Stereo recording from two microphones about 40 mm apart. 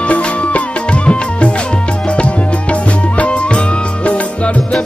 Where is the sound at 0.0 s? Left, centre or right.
Left.